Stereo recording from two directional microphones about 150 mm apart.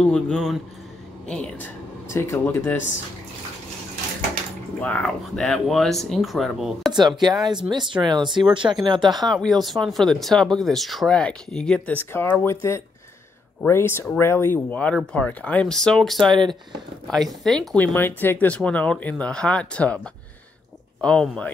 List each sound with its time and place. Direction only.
0.0 s speech: 5° left (ahead or behind)
2.0 s speech: 15° left (ahead or behind)
4.7 s speech: 10° left (ahead or behind)
6.9 s speech: 30° right (ahead or behind)
9.2 s speech: centre (ahead or behind)
16.3 s speech: 30° right (ahead or behind)
17.1 s speech: centre (ahead or behind)
21.0 s speech: 5° left (ahead or behind)